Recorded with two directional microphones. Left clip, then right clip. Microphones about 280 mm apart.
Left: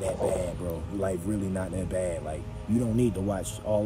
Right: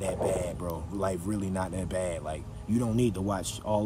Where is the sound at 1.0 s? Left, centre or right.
Left.